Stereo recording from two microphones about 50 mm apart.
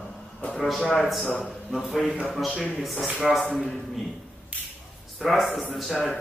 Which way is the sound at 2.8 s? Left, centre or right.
Centre.